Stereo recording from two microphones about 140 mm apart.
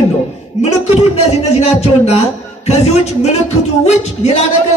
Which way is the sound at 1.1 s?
50° left (ahead or behind).